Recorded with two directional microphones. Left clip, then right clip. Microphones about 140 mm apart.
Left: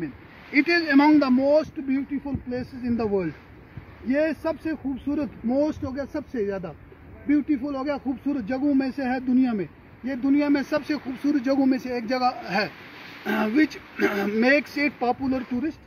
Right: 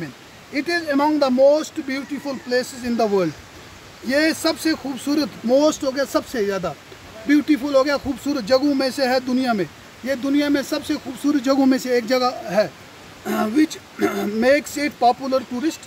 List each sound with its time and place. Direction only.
0.5 s speech: 40° right (ahead or behind)